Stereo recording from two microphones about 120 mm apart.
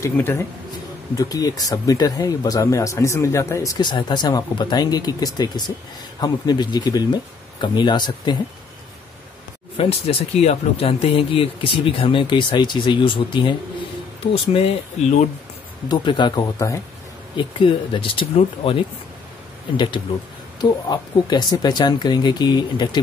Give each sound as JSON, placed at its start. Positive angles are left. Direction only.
{"t": 0.0, "sound": "speech", "side_deg": 20}
{"t": 1.1, "sound": "speech", "side_deg": 30}
{"t": 3.7, "sound": "speech", "side_deg": 40}
{"t": 9.8, "sound": "speech", "side_deg": 55}
{"t": 15.9, "sound": "speech", "side_deg": 40}
{"t": 17.4, "sound": "speech", "side_deg": 45}
{"t": 20.6, "sound": "speech", "side_deg": 35}